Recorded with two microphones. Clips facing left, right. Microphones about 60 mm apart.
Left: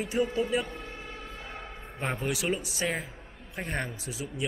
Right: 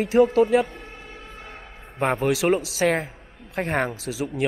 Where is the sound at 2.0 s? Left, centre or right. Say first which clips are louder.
Right 10 dB; right.